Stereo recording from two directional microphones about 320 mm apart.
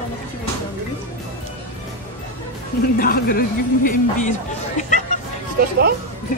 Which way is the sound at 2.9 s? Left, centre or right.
Left.